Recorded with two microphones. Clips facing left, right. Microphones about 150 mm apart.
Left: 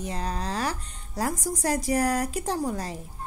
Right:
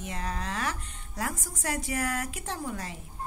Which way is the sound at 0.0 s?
35° left (ahead or behind).